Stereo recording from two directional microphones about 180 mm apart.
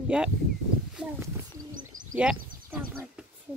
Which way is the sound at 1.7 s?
45° right (ahead or behind).